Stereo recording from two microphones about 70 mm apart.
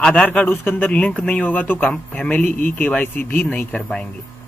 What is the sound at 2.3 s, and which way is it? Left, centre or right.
Speech, left.